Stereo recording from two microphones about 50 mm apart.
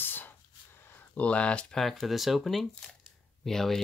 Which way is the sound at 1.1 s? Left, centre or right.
Left.